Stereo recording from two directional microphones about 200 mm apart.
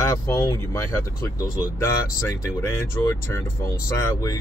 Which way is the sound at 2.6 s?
10° left (ahead or behind).